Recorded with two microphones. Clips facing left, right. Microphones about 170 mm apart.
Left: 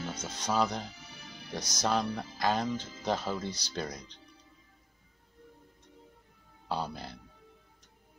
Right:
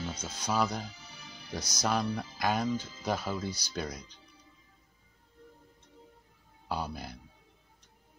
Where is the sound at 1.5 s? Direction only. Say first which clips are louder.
Even; 15° left (ahead or behind).